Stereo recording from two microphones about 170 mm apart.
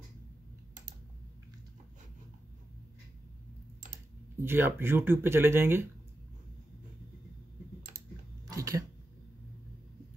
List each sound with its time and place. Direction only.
4.4 s speech: 15° right (ahead or behind)
8.5 s cough: 20° right (ahead or behind)